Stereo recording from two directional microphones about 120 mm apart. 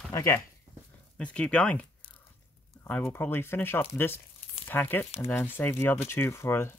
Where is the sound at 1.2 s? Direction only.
10° left (ahead or behind).